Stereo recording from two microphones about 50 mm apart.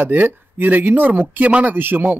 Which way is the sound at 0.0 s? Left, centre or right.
Right.